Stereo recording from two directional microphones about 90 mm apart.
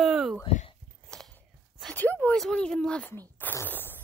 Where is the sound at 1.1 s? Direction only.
10° left (ahead or behind).